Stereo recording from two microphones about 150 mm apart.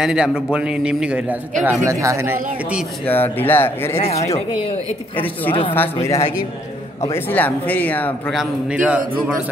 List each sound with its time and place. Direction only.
0.0 s a man's voice: 5° right (ahead or behind)
1.6 s speech: 20° right (ahead or behind)
3.1 s a man's voice: 15° left (ahead or behind)
4.0 s speech: 45° left (ahead or behind)
5.5 s speech: 35° left (ahead or behind)
7.0 s a man's voice: 10° left (ahead or behind)
8.4 s speech: 10° right (ahead or behind)